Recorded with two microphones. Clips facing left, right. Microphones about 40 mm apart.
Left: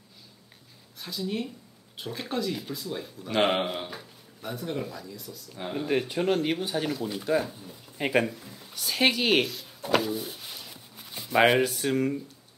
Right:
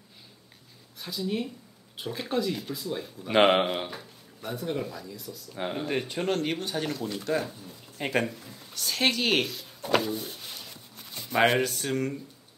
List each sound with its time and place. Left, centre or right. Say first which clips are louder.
1.0 s speech: right 1 dB; centre
5.6 s speech: right 1 dB; centre
5.9 s speech: left 5 dB; centre